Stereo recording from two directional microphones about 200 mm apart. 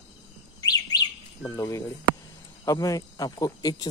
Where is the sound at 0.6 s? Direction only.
20° left (ahead or behind).